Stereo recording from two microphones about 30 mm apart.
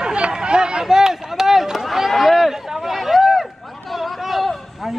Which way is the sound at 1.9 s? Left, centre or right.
Centre.